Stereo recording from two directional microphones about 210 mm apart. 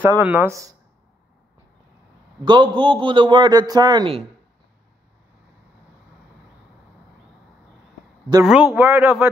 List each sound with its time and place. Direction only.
0.0 s speech: 10° right (ahead or behind)
2.4 s a man's voice: 20° right (ahead or behind)
8.5 s speech: 5° right (ahead or behind)